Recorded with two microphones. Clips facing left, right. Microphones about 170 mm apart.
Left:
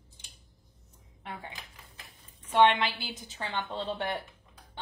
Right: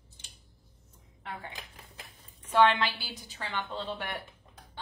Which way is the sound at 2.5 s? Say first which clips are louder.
Left 1 dB; 20° left (ahead or behind).